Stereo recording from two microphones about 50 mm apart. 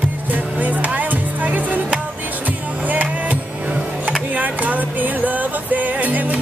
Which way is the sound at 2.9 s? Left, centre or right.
Right.